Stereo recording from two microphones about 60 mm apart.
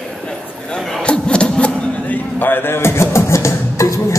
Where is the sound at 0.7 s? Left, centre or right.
Centre.